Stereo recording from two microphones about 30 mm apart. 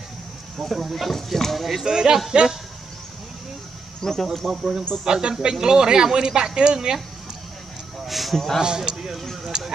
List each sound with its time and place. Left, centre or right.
0.7 s speech: centre
1.6 s speech: centre
1.9 s speech: right
4.0 s speech: centre
4.5 s a man's voice: centre
8.1 s a sound: centre
8.5 s speech: right
9.5 s a sound: centre